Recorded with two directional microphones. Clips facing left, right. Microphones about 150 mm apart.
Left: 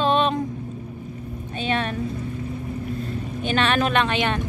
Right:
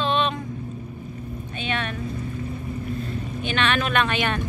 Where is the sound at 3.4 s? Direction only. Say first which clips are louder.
Left 3 dB; 40° left (ahead or behind).